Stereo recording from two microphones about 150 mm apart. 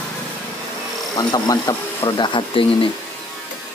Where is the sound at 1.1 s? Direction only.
25° left (ahead or behind).